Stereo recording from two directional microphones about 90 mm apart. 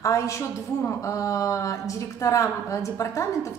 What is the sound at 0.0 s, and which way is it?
A woman's voice, 35° left (ahead or behind).